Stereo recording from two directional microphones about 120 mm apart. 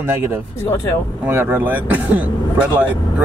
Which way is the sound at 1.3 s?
15° right (ahead or behind).